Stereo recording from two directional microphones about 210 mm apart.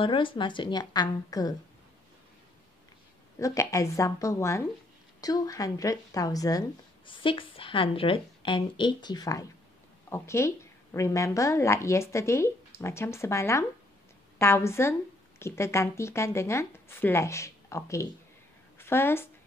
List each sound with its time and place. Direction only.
0.0 s a woman's voice: 25° left (ahead or behind)
3.3 s a woman's voice: 15° left (ahead or behind)